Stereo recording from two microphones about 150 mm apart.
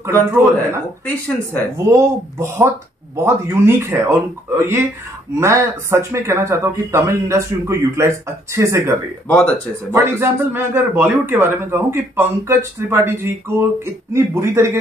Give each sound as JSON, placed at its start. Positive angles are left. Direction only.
{"t": 0.0, "sound": "speech", "side_deg": -20}
{"t": 1.0, "sound": "speech", "side_deg": 10}
{"t": 1.9, "sound": "a man's voice", "side_deg": -20}
{"t": 9.9, "sound": "a man's voice", "side_deg": -15}